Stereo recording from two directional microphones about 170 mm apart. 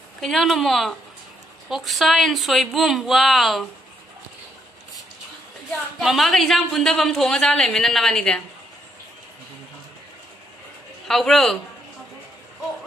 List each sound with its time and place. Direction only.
0.2 s a woman's voice: centre (ahead or behind)
5.7 s a woman's voice: centre (ahead or behind)
11.1 s a woman's voice: centre (ahead or behind)